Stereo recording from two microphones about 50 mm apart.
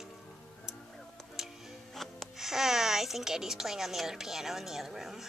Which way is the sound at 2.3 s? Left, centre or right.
Centre.